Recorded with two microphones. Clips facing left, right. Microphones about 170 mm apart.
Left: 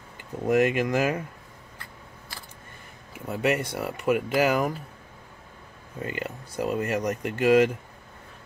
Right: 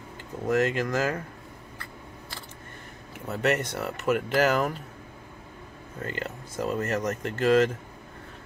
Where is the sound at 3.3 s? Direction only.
10° left (ahead or behind).